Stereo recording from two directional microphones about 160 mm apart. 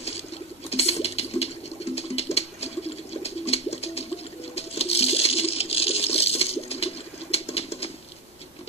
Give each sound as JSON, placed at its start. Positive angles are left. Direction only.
{"t": 0.7, "sound": "water", "side_deg": 40}
{"t": 2.0, "sound": "a sound", "side_deg": 40}
{"t": 4.6, "sound": "coin", "side_deg": 40}